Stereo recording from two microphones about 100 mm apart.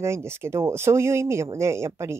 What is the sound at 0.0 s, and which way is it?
Speech, 25° right (ahead or behind).